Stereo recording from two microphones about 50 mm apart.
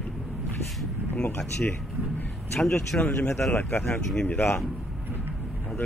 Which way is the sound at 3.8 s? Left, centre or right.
Left.